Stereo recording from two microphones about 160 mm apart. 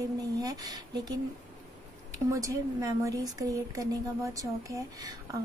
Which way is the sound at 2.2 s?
20° right (ahead or behind).